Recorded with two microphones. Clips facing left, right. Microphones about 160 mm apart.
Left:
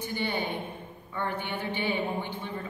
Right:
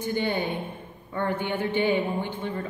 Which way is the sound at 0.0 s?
50° right (ahead or behind).